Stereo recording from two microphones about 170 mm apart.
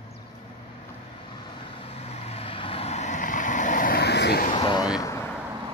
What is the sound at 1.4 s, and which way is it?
Vehicle, 35° left (ahead or behind).